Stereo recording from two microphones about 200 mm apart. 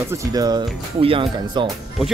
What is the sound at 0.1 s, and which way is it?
Speech, 15° right (ahead or behind).